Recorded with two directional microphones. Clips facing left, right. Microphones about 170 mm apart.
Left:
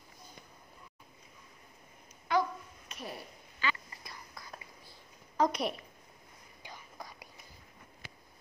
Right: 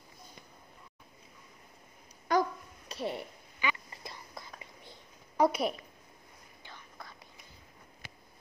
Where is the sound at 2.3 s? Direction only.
45° right (ahead or behind).